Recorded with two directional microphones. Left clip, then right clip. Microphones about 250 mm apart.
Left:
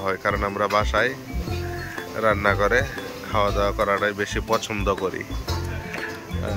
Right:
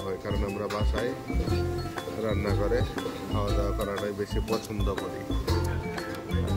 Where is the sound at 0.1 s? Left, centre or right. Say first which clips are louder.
Left 10 dB; left.